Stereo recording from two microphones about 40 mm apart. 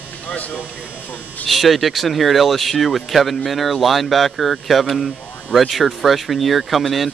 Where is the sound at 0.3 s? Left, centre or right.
Left.